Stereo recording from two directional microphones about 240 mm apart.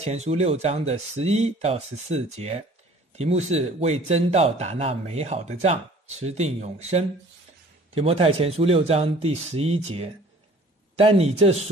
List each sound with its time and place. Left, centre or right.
0.0 s speech: right